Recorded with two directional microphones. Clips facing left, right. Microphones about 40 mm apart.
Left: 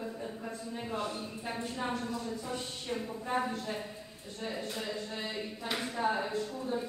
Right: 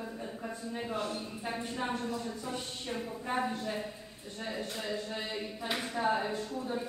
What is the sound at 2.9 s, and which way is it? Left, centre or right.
A woman's voice, centre.